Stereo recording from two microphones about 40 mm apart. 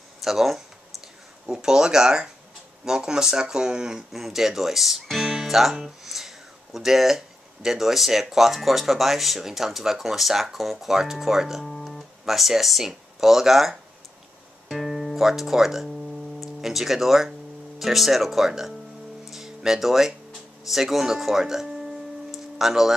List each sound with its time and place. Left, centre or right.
0.2 s speech: centre
1.5 s speech: centre
4.1 s speech: centre
19.2 s music: centre